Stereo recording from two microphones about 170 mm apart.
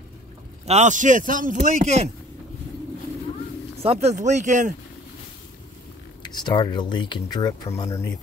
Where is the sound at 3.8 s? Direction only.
35° right (ahead or behind).